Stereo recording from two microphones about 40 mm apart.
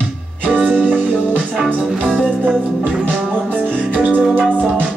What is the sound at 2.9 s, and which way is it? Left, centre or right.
Music, right.